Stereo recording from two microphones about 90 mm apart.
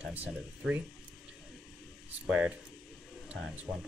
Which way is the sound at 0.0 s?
20° right (ahead or behind).